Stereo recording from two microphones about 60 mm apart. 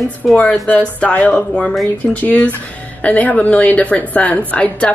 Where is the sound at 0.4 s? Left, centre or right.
Centre.